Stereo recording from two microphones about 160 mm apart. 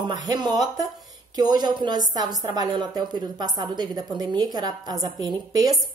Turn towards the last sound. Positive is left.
turn(degrees=-25)  # may be behind; listen again after turning